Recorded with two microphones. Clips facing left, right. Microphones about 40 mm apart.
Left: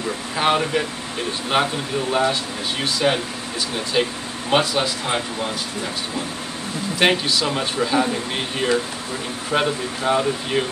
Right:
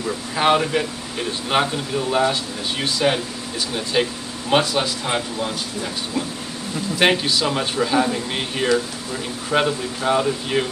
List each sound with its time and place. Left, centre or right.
0.4 s speech: centre
7.0 s speech: centre